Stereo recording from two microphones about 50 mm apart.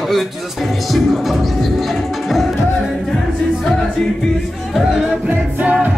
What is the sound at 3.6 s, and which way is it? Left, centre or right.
Music, centre.